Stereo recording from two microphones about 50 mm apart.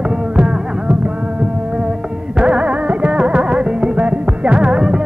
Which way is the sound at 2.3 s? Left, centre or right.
Centre.